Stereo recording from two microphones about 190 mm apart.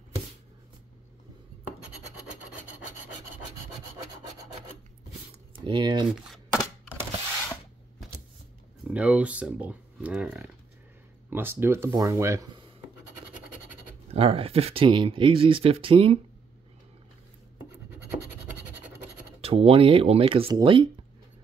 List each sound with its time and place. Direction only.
5.7 s speech: 25° right (ahead or behind)
6.0 s a sound: centre (ahead or behind)
8.9 s speech: 5° right (ahead or behind)
14.1 s speech: 30° right (ahead or behind)
19.4 s speech: 30° right (ahead or behind)